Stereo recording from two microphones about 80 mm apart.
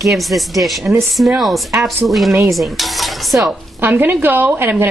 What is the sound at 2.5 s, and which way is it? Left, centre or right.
Stir, centre.